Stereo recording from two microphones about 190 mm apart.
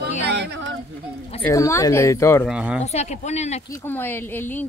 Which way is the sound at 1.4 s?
15° left (ahead or behind).